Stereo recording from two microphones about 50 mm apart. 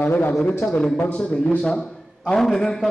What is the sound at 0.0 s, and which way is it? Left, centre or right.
Speech, left.